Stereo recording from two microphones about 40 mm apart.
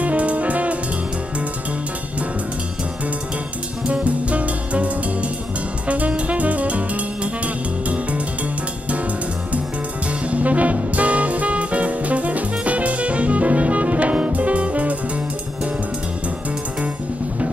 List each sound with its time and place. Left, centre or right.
0.0 s jazz: right
3.8 s music: right
5.9 s jazz: right
7.4 s music: right
10.2 s music: right